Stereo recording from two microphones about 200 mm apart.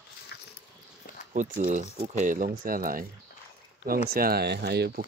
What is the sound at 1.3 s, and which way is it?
Speech, 40° right (ahead or behind).